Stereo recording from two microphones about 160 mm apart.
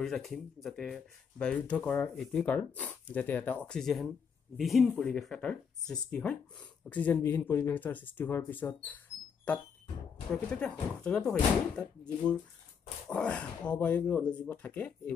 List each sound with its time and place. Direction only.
0.0 s speech: centre (ahead or behind)